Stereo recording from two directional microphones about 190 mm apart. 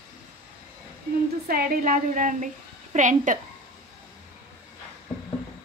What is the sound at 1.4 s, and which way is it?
A woman's voice, 50° right (ahead or behind).